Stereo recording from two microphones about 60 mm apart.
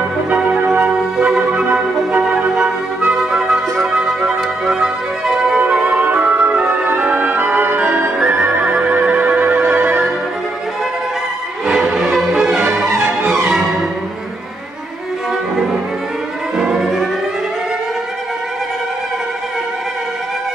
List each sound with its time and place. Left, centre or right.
0.3 s music: right
2.1 s music: centre
3.1 s music: centre
5.6 s music: right
6.9 s music: right
11.6 s music: centre
16.5 s violin: centre